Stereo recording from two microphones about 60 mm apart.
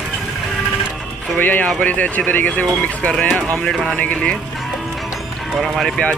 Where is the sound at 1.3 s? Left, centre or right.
Left.